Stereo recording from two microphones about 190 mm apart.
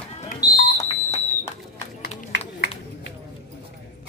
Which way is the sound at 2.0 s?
55° left (ahead or behind).